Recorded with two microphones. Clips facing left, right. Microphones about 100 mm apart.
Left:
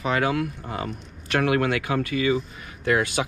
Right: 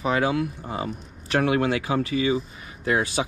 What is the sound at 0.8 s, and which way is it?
Speech, 30° right (ahead or behind).